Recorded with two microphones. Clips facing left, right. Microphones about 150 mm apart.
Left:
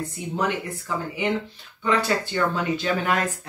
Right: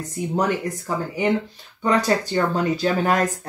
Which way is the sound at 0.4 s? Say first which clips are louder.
Right 3 dB; 40° right (ahead or behind).